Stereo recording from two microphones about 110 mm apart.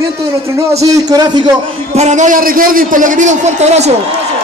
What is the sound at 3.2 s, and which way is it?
Speech, 90° right.